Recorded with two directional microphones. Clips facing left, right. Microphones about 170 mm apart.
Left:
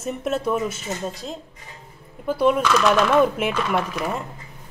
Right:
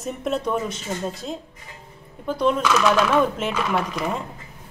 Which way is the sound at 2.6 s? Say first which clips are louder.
Left 1 dB; 5° right (ahead or behind).